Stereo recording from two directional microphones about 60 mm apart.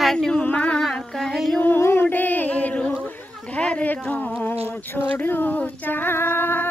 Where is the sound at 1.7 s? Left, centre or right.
Left.